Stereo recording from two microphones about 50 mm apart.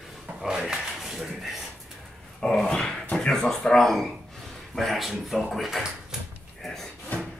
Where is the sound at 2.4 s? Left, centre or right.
Centre.